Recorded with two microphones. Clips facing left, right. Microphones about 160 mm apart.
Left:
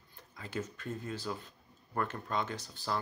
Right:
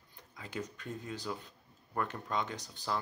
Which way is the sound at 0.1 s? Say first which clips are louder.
Left 2 dB; 15° right (ahead or behind).